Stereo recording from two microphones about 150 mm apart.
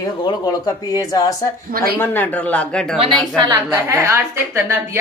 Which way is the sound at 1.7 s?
90° right.